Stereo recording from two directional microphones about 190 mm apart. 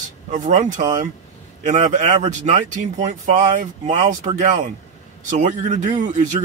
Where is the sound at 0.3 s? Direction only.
40° right (ahead or behind).